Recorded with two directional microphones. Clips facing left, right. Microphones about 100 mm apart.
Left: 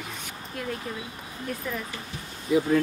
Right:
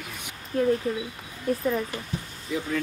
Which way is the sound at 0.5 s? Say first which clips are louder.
Right 12 dB; 35° right (ahead or behind).